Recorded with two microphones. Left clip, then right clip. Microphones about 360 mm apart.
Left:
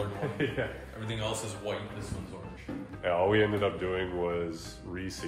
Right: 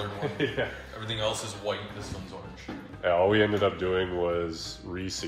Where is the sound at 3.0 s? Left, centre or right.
Right.